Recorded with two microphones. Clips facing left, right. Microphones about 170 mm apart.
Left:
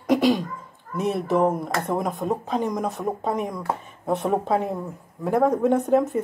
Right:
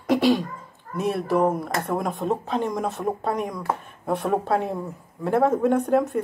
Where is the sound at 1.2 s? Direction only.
20° left (ahead or behind).